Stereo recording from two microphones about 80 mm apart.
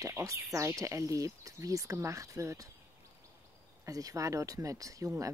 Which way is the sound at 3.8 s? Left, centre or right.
Right.